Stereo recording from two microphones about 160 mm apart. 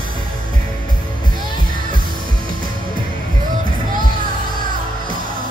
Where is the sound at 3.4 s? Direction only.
60° right (ahead or behind).